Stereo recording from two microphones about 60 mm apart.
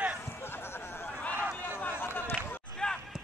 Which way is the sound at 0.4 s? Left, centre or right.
Left.